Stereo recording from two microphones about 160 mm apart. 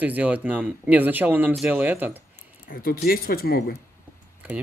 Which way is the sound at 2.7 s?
65° left (ahead or behind).